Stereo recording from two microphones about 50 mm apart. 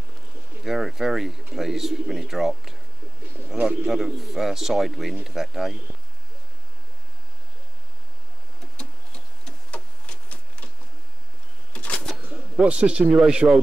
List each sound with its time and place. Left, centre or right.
0.7 s speech: centre
8.7 s printer: centre
9.7 s printer: left
12.6 s speech: right